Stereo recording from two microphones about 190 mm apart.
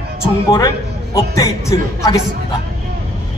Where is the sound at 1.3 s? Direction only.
15° left (ahead or behind).